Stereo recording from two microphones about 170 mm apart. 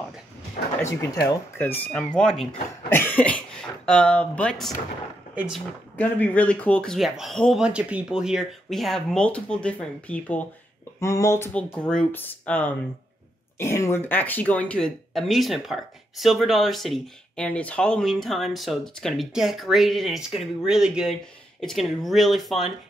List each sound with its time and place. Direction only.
0.6 s a sound: 60° left (ahead or behind)
1.2 s speech: 10° left (ahead or behind)
5.3 s speech: 10° right (ahead or behind)
5.9 s speech: 10° left (ahead or behind)